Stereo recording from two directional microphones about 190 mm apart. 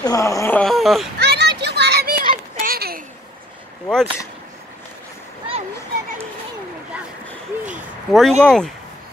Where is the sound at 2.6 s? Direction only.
50° right (ahead or behind).